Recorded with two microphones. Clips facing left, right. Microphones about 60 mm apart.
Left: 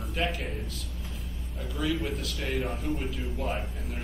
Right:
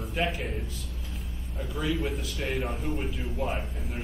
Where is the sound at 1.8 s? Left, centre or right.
Centre.